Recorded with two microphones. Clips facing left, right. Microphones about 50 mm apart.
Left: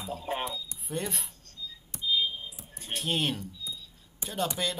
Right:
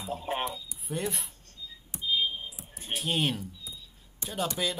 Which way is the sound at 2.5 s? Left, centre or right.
Centre.